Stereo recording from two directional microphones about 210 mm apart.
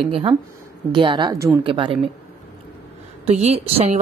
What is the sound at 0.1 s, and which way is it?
A woman's voice, 25° right (ahead or behind).